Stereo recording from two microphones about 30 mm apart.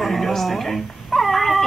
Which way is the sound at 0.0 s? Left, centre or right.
Centre.